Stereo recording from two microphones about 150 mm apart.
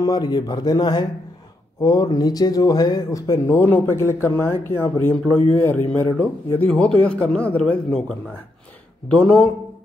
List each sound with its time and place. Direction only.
0.0 s speech: 25° left (ahead or behind)
3.4 s a man's voice: 15° left (ahead or behind)